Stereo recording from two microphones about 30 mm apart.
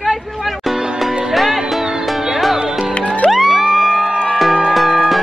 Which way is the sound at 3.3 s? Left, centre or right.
Centre.